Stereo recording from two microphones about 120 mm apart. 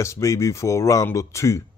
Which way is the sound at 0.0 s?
25° left (ahead or behind).